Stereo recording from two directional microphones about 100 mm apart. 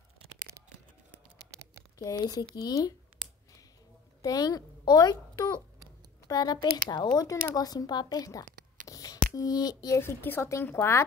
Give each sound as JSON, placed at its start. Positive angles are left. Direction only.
{"t": 2.0, "sound": "a woman's voice", "side_deg": 35}
{"t": 4.2, "sound": "a child's voice", "side_deg": 40}
{"t": 9.9, "sound": "a woman's voice", "side_deg": 20}